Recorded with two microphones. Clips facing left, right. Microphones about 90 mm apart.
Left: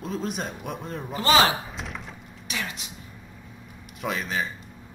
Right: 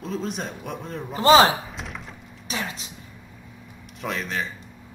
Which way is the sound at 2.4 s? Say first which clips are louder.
Right 2 dB; 30° right (ahead or behind).